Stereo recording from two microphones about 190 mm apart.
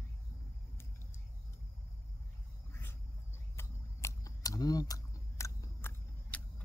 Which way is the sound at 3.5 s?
15° left (ahead or behind).